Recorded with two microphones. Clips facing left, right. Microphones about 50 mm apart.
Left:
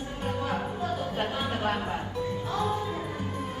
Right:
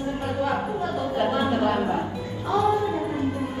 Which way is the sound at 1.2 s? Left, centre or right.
Right.